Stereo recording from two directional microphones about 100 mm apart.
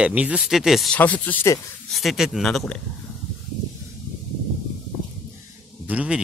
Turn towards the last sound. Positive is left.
turn(degrees=-15)  # may be behind; listen again after turning